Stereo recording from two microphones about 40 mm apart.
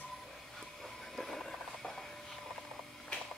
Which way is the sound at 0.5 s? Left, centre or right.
Centre.